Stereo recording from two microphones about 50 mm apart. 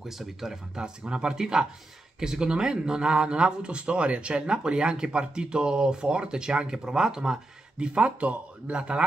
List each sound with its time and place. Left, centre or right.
0.0 s speech: centre